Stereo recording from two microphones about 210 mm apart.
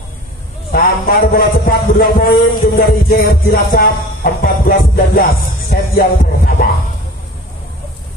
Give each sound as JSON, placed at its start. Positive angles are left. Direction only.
{"t": 0.7, "sound": "music", "side_deg": 45}